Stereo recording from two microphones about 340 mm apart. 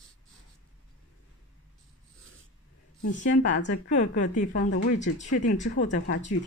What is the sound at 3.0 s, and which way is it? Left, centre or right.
A woman's voice, left.